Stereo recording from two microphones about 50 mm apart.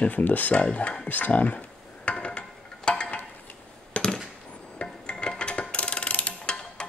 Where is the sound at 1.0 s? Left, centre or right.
Left.